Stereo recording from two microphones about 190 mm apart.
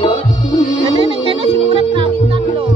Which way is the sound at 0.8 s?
25° right (ahead or behind).